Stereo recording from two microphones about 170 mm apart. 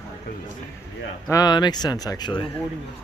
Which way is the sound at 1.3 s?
20° left (ahead or behind).